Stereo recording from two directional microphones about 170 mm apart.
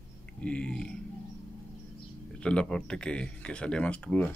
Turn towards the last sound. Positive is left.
turn(degrees=5)  # may be behind; listen again after turning